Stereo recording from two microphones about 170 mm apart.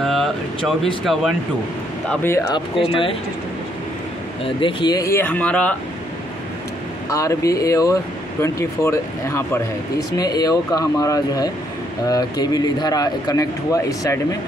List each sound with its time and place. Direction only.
0.0 s a sound: centre (ahead or behind)
2.0 s speech: 15° left (ahead or behind)
2.9 s speech: 30° left (ahead or behind)
4.6 s speech: 30° left (ahead or behind); by 5.8 s 5° left (ahead or behind)
7.1 s speech: 20° left (ahead or behind)